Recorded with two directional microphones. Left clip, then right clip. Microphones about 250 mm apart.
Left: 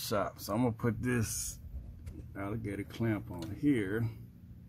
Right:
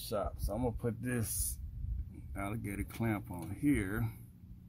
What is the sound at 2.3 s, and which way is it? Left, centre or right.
Speech, right.